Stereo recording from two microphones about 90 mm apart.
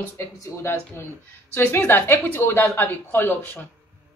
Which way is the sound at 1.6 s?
25° left (ahead or behind).